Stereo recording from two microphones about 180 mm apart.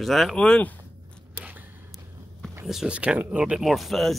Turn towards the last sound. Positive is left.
turn(degrees=0)  # may be behind; listen again after turning